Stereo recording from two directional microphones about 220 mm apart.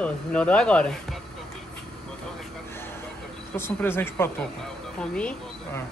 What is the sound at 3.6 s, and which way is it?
A woman's voice, 10° left (ahead or behind).